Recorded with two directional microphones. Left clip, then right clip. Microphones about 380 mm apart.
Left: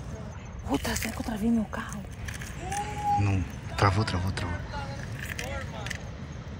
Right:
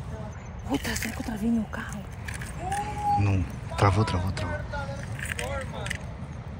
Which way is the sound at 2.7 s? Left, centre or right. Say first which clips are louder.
Right 2 dB; centre.